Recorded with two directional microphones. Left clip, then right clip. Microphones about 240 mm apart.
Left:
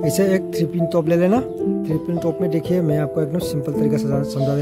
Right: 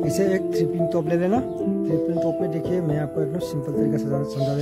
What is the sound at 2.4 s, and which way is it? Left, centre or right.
Speech, left.